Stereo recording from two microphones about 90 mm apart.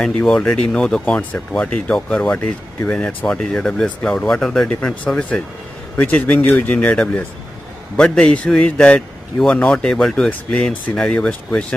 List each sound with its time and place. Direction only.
0.0 s speech: 10° left (ahead or behind)